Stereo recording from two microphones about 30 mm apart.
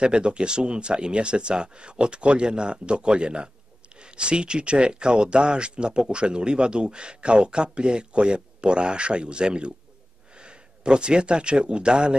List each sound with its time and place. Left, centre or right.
0.0 s speech: right